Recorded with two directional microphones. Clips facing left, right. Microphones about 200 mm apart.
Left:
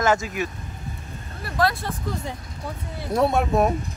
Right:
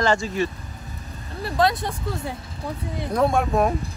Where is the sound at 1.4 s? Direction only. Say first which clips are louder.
Right 2 dB; 20° right (ahead or behind).